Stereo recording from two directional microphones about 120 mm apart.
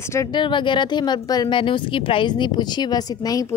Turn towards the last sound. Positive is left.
turn(degrees=30)  # may be behind; listen again after turning